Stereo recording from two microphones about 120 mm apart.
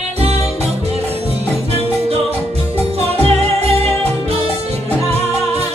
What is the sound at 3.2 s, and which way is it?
Music, 60° right (ahead or behind).